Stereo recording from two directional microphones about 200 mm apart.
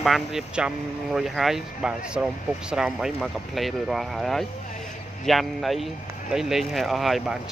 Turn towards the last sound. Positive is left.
turn(degrees=0)  # may be behind; listen again after turning